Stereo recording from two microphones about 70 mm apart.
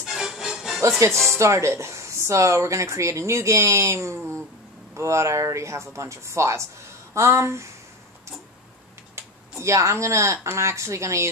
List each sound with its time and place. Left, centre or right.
0.0 s music: centre
0.8 s speech: right
9.1 s speech: right